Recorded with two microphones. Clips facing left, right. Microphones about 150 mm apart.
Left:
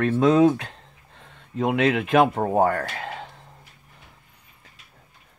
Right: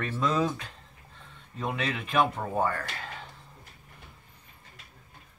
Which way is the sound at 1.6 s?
90° left.